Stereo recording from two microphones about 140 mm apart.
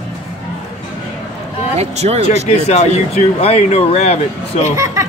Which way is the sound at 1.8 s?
50° right (ahead or behind).